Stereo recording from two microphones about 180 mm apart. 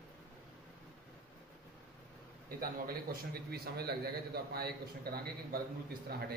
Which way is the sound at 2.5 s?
55° right (ahead or behind).